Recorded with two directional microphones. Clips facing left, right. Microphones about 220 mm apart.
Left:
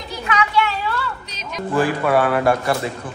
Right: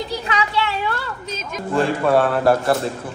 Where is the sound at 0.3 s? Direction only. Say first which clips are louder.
Left 4 dB; 30° right (ahead or behind).